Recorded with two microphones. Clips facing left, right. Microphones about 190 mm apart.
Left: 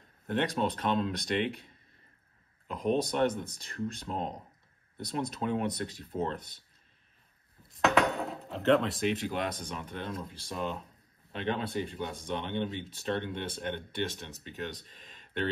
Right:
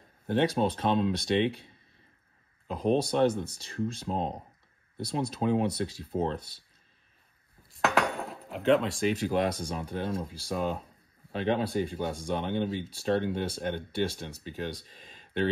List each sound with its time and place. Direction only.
0.3 s speech: 35° right (ahead or behind)
2.7 s speech: 30° right (ahead or behind)
7.7 s cutlery: centre (ahead or behind)
9.3 s speech: 35° right (ahead or behind)